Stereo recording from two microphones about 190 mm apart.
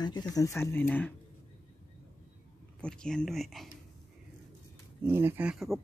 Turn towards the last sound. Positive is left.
turn(degrees=0)  # may be behind; listen again after turning